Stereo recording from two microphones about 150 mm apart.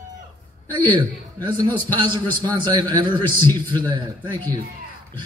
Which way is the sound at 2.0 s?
30° right (ahead or behind).